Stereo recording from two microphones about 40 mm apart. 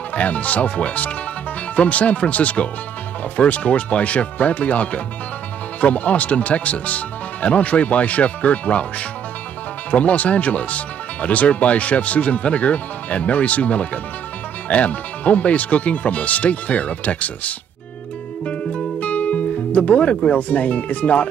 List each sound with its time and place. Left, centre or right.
0.1 s speech: left
9.8 s speech: left
18.7 s music: left
20.2 s speech: left